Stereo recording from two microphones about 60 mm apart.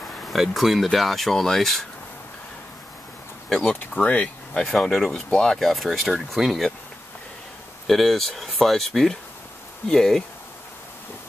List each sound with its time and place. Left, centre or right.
0.3 s speech: centre
3.4 s speech: centre
3.9 s speech: left
4.6 s speech: centre
7.8 s speech: centre